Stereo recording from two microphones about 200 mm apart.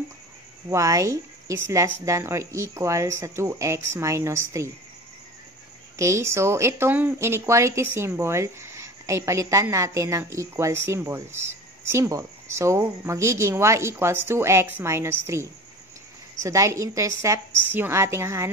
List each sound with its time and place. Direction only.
0.7 s speech: 15° right (ahead or behind)
5.9 s speech: 15° right (ahead or behind)
16.4 s speech: 15° right (ahead or behind)